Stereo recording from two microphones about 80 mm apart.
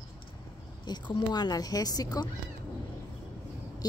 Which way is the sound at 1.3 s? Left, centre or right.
Left.